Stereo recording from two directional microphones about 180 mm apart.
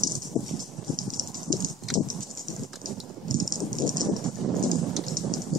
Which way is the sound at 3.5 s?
50° right (ahead or behind).